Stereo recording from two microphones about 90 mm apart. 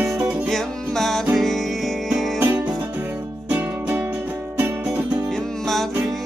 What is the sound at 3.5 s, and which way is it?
Music, 20° right (ahead or behind).